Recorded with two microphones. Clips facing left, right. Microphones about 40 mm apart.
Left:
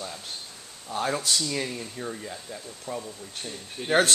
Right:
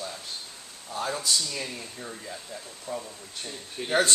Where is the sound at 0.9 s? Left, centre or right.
Left.